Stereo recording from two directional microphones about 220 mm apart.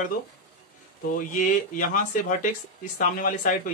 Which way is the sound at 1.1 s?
35° left (ahead or behind).